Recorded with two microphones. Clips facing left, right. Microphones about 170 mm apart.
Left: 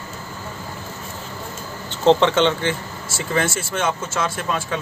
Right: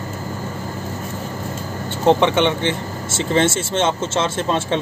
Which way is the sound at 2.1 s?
15° right (ahead or behind).